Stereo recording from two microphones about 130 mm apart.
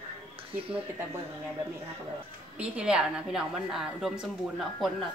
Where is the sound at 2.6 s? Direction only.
10° right (ahead or behind).